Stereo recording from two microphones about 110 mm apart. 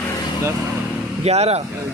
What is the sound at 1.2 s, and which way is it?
Speech, 75° right (ahead or behind).